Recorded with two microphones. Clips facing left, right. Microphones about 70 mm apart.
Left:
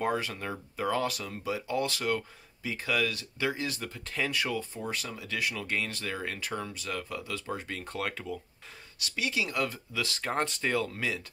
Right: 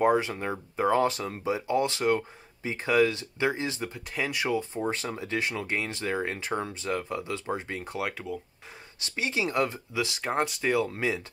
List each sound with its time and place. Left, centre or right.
0.0 s speech: right
9.0 s speech: right; by 10.9 s centre
10.9 s speech: right